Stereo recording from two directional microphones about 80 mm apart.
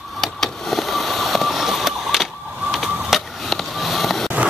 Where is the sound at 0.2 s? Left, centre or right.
Centre.